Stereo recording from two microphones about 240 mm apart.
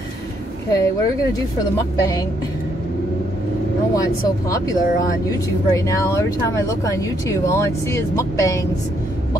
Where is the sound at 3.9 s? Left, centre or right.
Centre.